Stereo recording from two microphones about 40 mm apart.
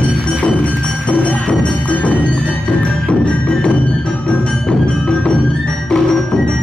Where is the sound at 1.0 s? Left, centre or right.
Left.